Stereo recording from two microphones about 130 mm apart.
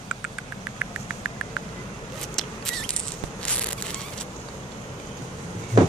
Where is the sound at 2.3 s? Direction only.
5° left (ahead or behind).